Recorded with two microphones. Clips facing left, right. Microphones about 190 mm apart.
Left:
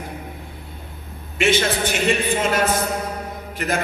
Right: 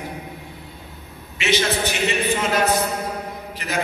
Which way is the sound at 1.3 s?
50° left (ahead or behind).